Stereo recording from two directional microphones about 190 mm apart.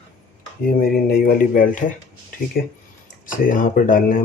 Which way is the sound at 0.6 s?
50° left (ahead or behind).